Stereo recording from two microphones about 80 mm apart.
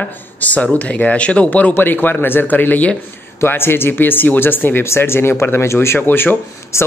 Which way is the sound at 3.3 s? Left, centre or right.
Left.